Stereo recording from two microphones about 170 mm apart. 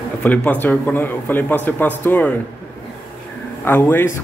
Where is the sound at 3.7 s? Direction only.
10° left (ahead or behind).